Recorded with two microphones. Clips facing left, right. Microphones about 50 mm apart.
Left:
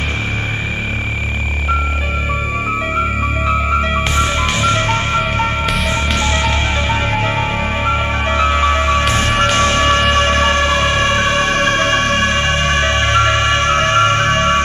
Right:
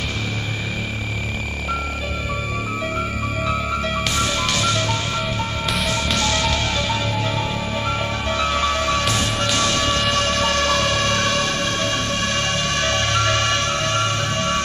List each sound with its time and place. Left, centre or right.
3.4 s music: left
5.9 s music: left